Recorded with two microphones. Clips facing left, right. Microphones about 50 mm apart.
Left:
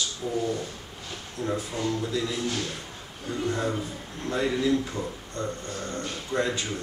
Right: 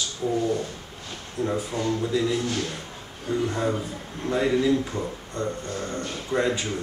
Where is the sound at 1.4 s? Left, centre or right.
Centre.